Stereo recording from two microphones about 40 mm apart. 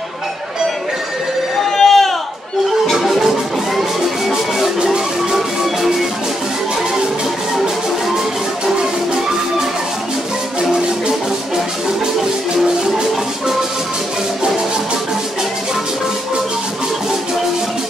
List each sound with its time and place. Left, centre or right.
1.6 s a sound: centre
2.9 s music: centre
4.8 s music: centre
10.6 s music: centre